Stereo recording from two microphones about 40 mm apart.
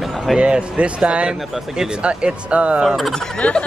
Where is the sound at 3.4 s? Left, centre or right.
Left.